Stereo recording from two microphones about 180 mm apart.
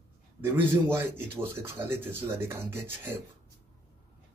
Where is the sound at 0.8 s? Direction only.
10° right (ahead or behind).